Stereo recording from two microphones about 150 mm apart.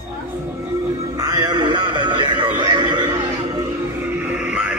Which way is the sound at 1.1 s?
25° right (ahead or behind).